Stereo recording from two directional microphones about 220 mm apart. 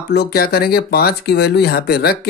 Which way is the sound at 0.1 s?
45° left (ahead or behind).